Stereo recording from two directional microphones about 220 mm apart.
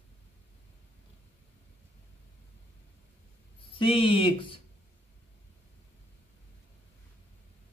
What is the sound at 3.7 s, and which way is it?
Speech, 25° left (ahead or behind).